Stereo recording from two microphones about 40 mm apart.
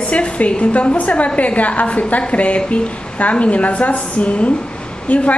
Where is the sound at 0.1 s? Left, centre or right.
Left.